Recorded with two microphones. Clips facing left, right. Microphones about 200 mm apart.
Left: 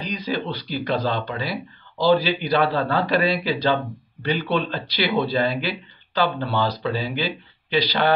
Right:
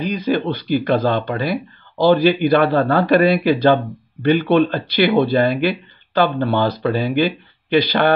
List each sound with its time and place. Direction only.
0.0 s speech: 55° right (ahead or behind)